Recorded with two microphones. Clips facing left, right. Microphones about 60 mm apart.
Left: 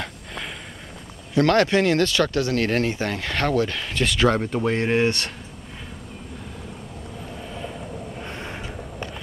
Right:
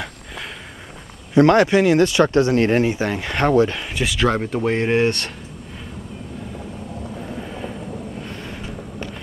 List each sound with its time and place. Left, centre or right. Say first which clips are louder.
1.3 s speech: right 5 dB; right
4.0 s speech: even; centre
8.3 s vehicle: right 1 dB; left